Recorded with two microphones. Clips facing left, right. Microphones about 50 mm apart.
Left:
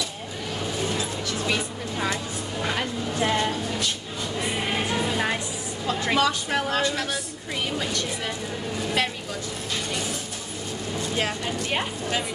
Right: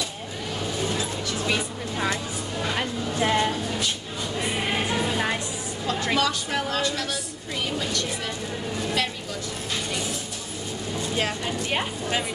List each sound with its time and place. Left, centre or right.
1.2 s vehicle: centre
2.7 s a sound: centre
4.6 s music: centre
5.9 s speech: centre
9.0 s speech: left
11.1 s speech: centre